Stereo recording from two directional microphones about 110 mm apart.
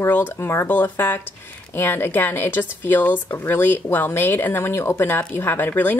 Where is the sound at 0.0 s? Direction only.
20° left (ahead or behind).